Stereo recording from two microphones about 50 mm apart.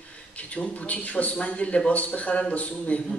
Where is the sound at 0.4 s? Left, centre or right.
Left.